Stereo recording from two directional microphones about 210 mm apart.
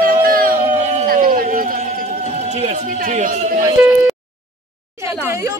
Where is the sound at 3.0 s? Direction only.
40° right (ahead or behind).